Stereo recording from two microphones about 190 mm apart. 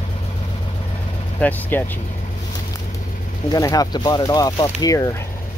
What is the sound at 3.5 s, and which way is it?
Speech, 20° left (ahead or behind).